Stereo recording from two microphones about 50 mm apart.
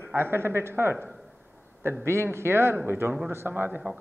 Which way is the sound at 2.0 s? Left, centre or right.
Right.